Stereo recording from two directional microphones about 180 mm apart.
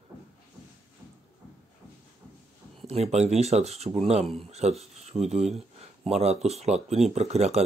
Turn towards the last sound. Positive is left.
turn(degrees=-35)  # may be behind; listen again after turning